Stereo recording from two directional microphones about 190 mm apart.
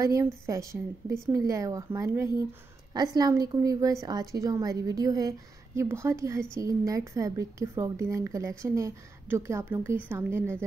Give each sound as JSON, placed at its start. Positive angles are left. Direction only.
{"t": 0.0, "sound": "a woman's voice", "side_deg": -15}